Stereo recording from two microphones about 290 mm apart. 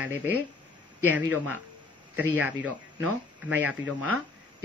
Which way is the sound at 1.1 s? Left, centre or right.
Centre.